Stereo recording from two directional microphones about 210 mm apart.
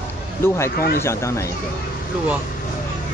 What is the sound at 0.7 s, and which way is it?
Speech, 45° left (ahead or behind).